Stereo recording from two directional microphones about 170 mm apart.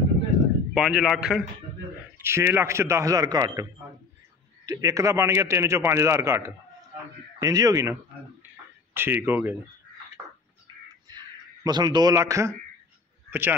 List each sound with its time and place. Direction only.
0.7 s a man's voice: centre (ahead or behind)
2.1 s a man's voice: 15° right (ahead or behind)
4.6 s a man's voice: 20° right (ahead or behind)
11.6 s a man's voice: 25° right (ahead or behind)